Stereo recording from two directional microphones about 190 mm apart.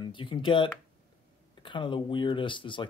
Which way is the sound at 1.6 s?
25° left (ahead or behind).